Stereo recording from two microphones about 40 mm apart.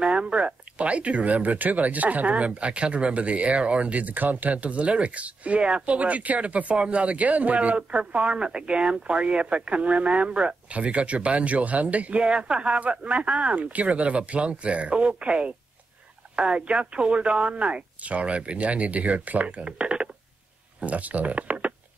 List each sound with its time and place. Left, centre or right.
0.0 s speech: right
20.8 s speech: right